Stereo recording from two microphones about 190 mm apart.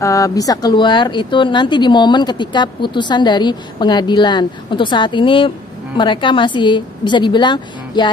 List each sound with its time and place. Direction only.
0.0 s speech: 20° left (ahead or behind)